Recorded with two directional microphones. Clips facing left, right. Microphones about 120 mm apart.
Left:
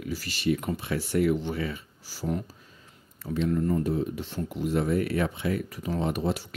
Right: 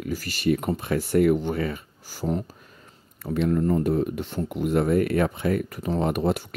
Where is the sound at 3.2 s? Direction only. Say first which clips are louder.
Right 4 dB; 60° right (ahead or behind).